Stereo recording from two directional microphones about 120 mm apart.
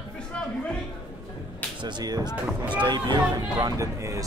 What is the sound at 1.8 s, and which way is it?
Speech, 35° right (ahead or behind).